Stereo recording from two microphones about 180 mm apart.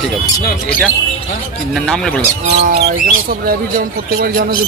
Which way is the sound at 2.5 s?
70° right (ahead or behind).